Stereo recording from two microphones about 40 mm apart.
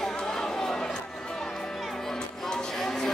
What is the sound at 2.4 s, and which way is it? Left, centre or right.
Music, centre.